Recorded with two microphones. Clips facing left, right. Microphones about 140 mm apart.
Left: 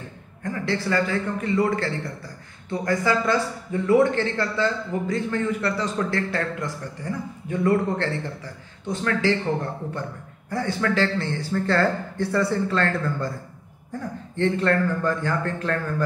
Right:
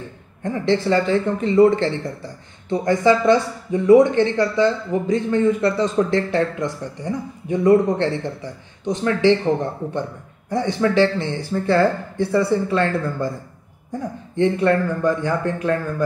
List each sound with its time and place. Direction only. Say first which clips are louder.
0.4 s a man's voice: right 7 dB; 20° right (ahead or behind)